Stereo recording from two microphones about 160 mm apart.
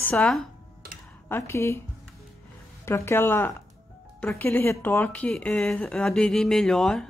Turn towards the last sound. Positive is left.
turn(degrees=5)  # may be behind; listen again after turning